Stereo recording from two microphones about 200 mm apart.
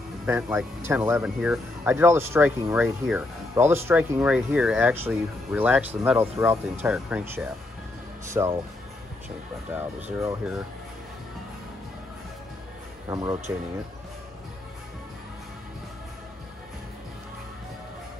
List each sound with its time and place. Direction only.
0.3 s speech: 5° right (ahead or behind)
9.7 s speech: 10° right (ahead or behind)
13.1 s speech: 15° right (ahead or behind)